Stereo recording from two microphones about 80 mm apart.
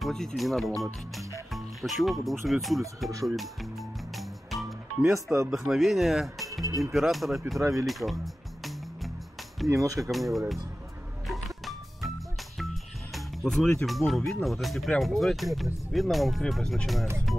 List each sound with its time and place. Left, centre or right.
0.0 s speech: centre
3.3 s music: centre
5.1 s speech: right
5.5 s speech: centre
9.7 s speech: right
10.1 s speech: centre
11.2 s music: centre
12.5 s speech: centre